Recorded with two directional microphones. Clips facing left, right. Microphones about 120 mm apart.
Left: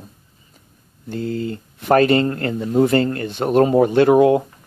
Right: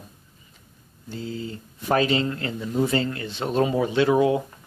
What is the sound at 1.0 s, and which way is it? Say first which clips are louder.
Speech: left 8 dB; 60° left (ahead or behind).